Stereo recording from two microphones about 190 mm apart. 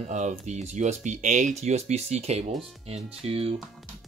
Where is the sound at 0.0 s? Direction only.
40° right (ahead or behind).